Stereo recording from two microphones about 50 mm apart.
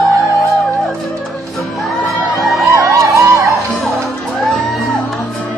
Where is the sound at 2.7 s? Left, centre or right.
Right.